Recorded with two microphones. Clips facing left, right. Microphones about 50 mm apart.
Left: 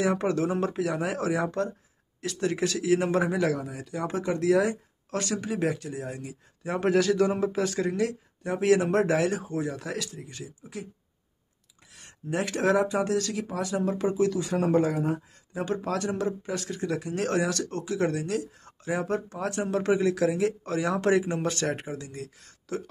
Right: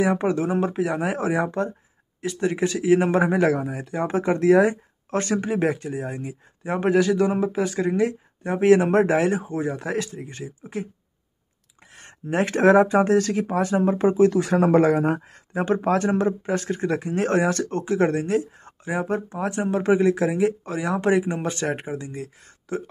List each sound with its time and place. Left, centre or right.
0.0 s speech: centre
6.6 s speech: centre; by 10.9 s right
11.9 s speech: right
14.4 s speech: right
15.6 s speech: right
18.9 s speech: centre